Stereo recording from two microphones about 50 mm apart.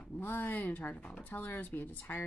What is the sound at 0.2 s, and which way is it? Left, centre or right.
Speech, left.